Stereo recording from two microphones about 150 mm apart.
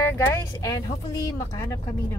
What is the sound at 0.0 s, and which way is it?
Speech, 15° left (ahead or behind).